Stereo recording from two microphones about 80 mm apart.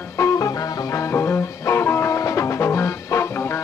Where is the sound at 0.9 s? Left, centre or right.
Left.